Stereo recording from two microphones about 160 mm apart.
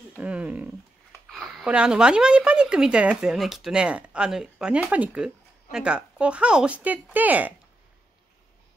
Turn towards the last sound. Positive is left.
turn(degrees=-10)  # may be behind; listen again after turning